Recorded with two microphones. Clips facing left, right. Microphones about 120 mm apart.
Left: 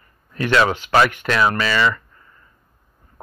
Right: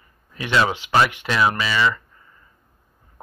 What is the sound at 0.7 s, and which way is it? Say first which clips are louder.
Speech: left 2 dB; 45° left (ahead or behind).